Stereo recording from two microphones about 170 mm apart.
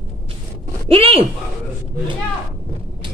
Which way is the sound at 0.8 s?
35° right (ahead or behind).